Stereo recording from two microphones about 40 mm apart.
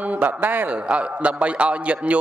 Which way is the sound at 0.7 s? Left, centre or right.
Right.